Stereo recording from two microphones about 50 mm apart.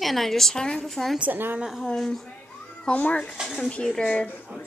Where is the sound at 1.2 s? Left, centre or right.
Right.